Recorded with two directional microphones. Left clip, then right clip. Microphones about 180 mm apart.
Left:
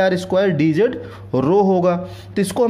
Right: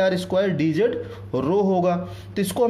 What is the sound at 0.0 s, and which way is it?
A man's voice, 20° left (ahead or behind).